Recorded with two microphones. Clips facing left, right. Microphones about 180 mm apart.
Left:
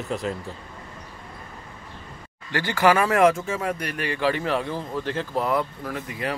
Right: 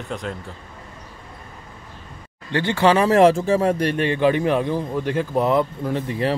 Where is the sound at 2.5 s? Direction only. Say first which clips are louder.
Right 3 dB; 25° right (ahead or behind).